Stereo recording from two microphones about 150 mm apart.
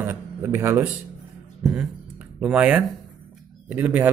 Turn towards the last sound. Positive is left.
turn(degrees=-10)  # may be behind; listen again after turning